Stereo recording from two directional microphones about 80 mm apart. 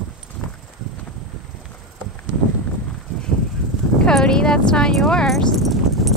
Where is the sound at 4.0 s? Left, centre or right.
Centre.